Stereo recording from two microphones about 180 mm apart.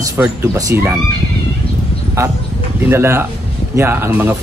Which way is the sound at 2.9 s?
15° right (ahead or behind).